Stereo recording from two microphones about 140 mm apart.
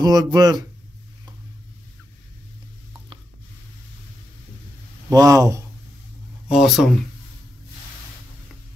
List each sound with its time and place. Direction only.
0.0 s speech: 25° right (ahead or behind)
5.1 s speech: 25° right (ahead or behind)
6.5 s speech: centre (ahead or behind)